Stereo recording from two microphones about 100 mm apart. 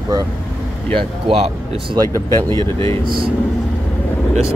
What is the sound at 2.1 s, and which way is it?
Speech, 30° left (ahead or behind).